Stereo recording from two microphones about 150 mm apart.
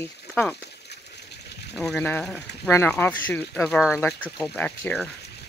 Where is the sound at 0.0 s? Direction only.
10° left (ahead or behind).